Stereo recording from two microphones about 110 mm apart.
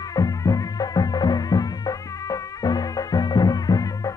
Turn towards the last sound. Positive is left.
turn(degrees=35)  # may be behind; listen again after turning